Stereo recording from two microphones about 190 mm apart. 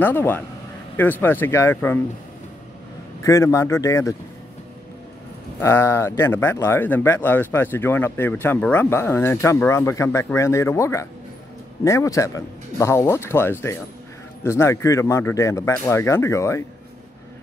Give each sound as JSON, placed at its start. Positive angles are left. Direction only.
{"t": 0.0, "sound": "speech", "side_deg": 10}
{"t": 3.3, "sound": "speech", "side_deg": 15}
{"t": 5.6, "sound": "speech", "side_deg": 15}